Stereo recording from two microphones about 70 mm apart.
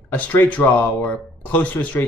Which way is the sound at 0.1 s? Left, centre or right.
Left.